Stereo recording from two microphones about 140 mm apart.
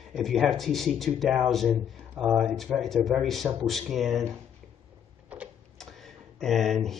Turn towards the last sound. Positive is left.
turn(degrees=0)  # may be behind; listen again after turning